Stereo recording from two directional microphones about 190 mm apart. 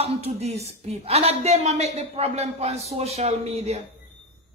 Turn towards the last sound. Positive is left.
turn(degrees=-35)  # may be behind; listen again after turning